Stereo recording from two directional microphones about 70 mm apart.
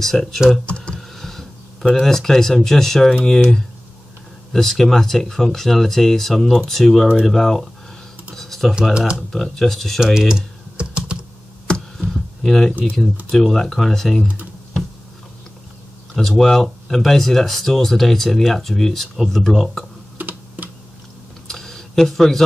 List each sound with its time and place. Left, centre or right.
0.0 s speech: centre
0.7 s typing: centre
0.9 s a sound: centre
1.9 s speech: centre
4.5 s speech: centre
8.4 s a sound: centre
8.9 s speech: centre
9.3 s speech: centre
12.0 s a sound: centre
13.3 s speech: centre
16.2 s speech: centre
20.2 s computer keyboard: right
21.5 s a sound: centre